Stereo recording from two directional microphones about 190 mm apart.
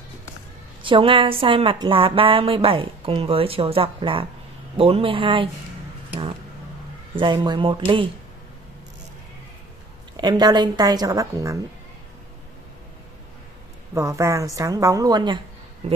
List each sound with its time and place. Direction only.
0.8 s a woman's voice: 25° right (ahead or behind)
7.2 s a woman's voice: 25° right (ahead or behind)
10.1 s a woman's voice: 20° right (ahead or behind)
13.9 s a woman's voice: 15° right (ahead or behind); by 16.0 s 30° right (ahead or behind)